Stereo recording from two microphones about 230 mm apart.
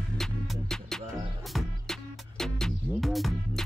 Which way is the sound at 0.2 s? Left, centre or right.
Centre.